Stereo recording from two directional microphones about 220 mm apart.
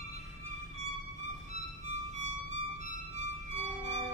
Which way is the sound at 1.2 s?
30° right (ahead or behind).